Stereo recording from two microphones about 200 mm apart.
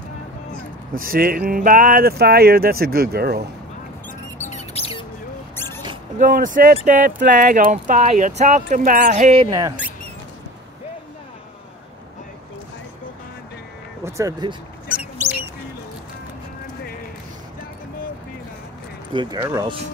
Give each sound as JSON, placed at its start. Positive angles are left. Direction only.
{"t": 0.9, "sound": "speech", "side_deg": -45}
{"t": 4.4, "sound": "music", "side_deg": 35}
{"t": 6.1, "sound": "speech", "side_deg": -40}
{"t": 14.0, "sound": "speech", "side_deg": -15}
{"t": 14.9, "sound": "squeak", "side_deg": -10}